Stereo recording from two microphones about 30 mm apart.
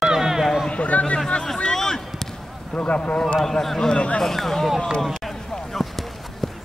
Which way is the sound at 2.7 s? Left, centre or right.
Left.